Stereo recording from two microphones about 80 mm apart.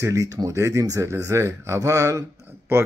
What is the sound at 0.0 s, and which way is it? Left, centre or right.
Speech, right.